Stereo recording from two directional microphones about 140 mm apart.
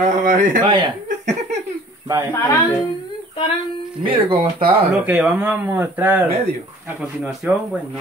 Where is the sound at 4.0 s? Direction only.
35° right (ahead or behind).